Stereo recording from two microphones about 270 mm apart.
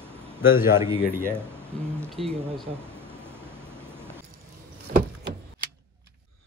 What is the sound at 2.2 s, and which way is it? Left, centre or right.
Speech, right.